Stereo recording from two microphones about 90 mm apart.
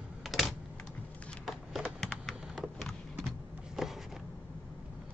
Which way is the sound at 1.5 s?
Centre (ahead or behind).